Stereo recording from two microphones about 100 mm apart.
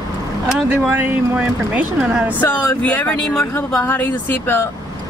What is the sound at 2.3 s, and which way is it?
Speech, 15° left (ahead or behind).